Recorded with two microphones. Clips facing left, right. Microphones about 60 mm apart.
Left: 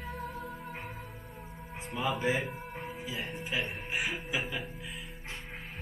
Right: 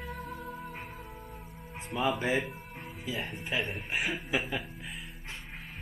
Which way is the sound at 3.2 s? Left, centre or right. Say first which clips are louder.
Right 1 dB; centre.